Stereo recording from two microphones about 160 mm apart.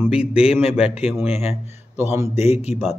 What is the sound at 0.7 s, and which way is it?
Speech, 5° right (ahead or behind).